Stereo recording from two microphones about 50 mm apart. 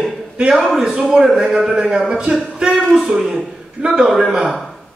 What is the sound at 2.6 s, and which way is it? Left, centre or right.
Speech, centre.